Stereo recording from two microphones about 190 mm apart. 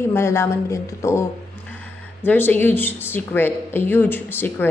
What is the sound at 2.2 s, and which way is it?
Speech, 10° left (ahead or behind).